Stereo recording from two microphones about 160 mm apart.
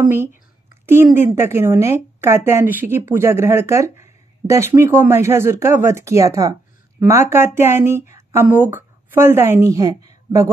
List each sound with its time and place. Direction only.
0.8 s a woman's voice: 15° right (ahead or behind)